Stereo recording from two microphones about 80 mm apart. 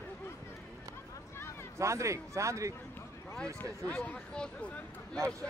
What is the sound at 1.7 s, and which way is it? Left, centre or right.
A man's voice, right.